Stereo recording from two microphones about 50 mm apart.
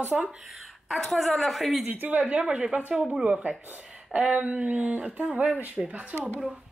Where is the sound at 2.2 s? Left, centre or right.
Centre.